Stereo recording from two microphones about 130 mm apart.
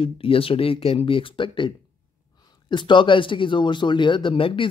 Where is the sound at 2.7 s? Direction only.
40° left (ahead or behind).